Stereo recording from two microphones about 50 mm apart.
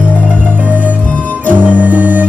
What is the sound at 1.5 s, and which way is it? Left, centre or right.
Music, right.